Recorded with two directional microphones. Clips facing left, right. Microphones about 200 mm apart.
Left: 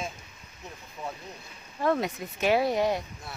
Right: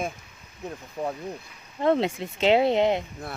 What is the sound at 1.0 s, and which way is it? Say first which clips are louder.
Speech: right 8 dB; 40° right (ahead or behind).